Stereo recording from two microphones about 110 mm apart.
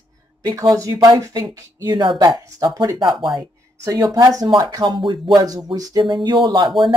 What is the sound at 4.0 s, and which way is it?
Speech, 40° right (ahead or behind).